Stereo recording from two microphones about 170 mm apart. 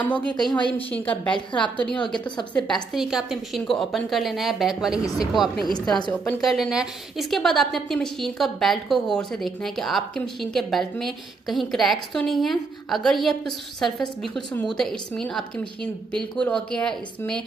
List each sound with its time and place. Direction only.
0.0 s a woman's voice: 10° left (ahead or behind)
1.5 s a woman's voice: 30° left (ahead or behind)
2.5 s a woman's voice: centre (ahead or behind)
5.0 s a woman's voice: 20° left (ahead or behind)
5.3 s a woman's voice: centre (ahead or behind)